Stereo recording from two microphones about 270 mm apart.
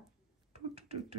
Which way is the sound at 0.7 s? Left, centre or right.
Right.